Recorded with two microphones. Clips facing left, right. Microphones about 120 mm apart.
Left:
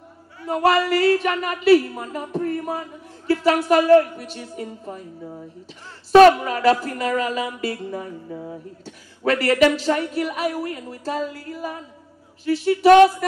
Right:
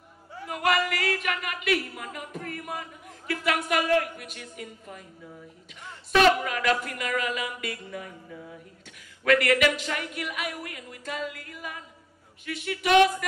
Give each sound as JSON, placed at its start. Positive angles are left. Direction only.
{"t": 0.5, "sound": "a woman's voice", "side_deg": 30}